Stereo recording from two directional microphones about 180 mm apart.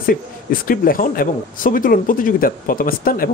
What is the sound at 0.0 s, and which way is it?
Speech, 50° left (ahead or behind).